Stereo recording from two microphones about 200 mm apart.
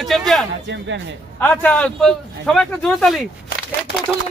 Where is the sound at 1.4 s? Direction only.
5° left (ahead or behind).